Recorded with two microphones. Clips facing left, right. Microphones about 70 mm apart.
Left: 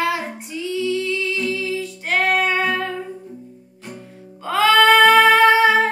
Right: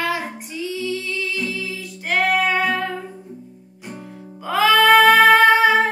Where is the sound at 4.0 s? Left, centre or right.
Right.